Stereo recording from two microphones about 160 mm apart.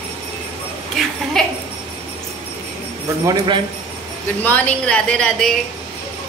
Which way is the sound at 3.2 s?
30° right (ahead or behind).